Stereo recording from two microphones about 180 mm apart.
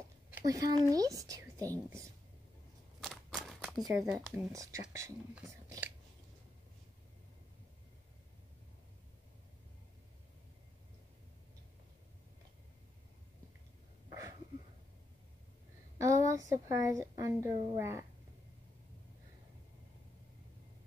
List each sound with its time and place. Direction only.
0.4 s speech: 20° right (ahead or behind)
3.0 s a sound: centre (ahead or behind)
3.8 s speech: 20° right (ahead or behind)
16.0 s a woman's voice: 15° right (ahead or behind)